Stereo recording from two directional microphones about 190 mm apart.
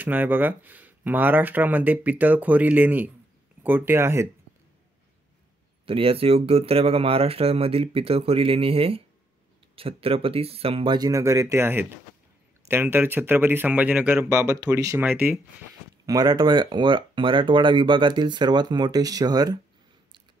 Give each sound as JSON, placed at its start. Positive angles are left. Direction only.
{"t": 0.0, "sound": "speech", "side_deg": -10}
{"t": 5.9, "sound": "speech", "side_deg": -30}
{"t": 16.1, "sound": "speech", "side_deg": -20}